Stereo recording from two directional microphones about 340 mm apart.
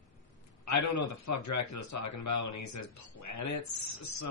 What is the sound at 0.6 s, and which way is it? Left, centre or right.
A man's voice, left.